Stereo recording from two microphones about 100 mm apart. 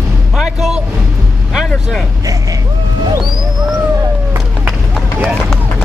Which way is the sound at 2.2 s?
35° right (ahead or behind).